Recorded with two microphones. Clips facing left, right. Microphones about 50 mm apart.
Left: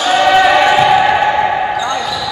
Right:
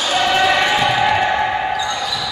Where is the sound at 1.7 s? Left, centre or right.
Left.